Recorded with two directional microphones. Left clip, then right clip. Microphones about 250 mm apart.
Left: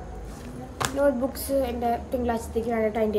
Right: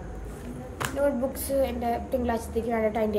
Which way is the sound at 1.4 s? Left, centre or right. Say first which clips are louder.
Left 1 dB; centre.